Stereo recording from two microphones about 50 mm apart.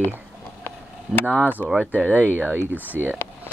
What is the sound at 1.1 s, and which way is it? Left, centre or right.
Speech, centre.